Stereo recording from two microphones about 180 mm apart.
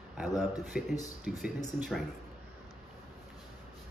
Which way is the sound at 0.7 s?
5° right (ahead or behind).